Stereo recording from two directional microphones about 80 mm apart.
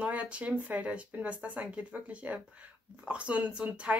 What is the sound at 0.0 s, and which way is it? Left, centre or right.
Speech, centre.